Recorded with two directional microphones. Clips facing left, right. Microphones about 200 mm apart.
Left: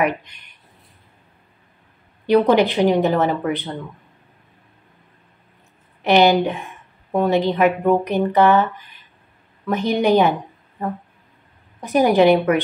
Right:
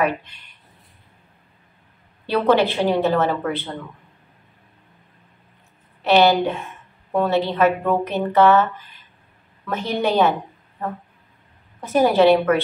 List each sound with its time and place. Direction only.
0.0 s speech: 15° left (ahead or behind)
2.2 s speech: 15° left (ahead or behind)
6.0 s speech: 15° left (ahead or behind)
9.7 s speech: 15° left (ahead or behind)
11.8 s speech: 15° left (ahead or behind)